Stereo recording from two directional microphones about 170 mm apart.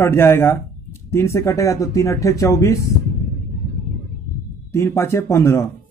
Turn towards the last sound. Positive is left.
turn(degrees=15)  # may be behind; listen again after turning